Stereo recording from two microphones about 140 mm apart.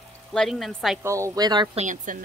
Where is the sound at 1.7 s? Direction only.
65° right (ahead or behind).